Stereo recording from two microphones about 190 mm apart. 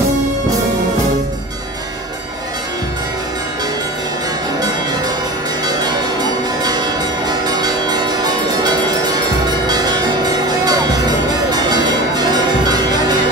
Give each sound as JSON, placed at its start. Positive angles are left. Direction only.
{"t": 6.6, "sound": "change ringing", "side_deg": -20}
{"t": 10.6, "sound": "music", "side_deg": -20}
{"t": 11.5, "sound": "change ringing", "side_deg": -20}